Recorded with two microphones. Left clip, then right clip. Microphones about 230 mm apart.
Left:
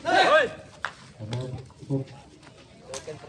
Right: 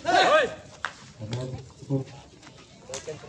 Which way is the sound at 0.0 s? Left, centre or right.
Centre.